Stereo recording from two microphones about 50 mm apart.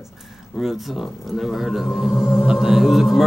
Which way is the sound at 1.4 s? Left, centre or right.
Centre.